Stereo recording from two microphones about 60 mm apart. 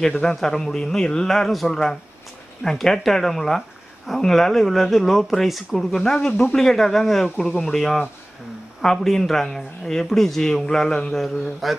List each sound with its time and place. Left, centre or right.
0.1 s a man's voice: centre
11.1 s speech: centre